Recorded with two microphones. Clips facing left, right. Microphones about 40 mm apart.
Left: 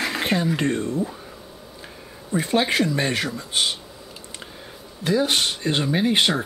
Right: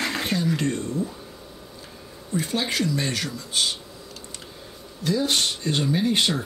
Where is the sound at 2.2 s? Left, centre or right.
Left.